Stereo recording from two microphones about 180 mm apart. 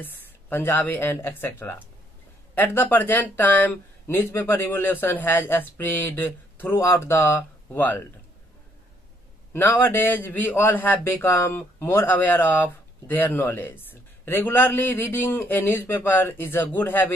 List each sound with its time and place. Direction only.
0.0 s a man's voice: 10° left (ahead or behind)
9.5 s a man's voice: 10° left (ahead or behind)